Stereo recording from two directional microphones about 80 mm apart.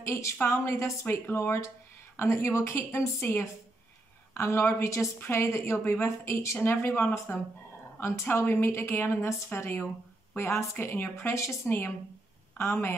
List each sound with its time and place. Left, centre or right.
0.0 s a woman's voice: left